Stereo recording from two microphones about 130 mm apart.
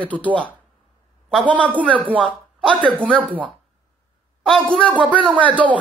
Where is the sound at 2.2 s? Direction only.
5° left (ahead or behind).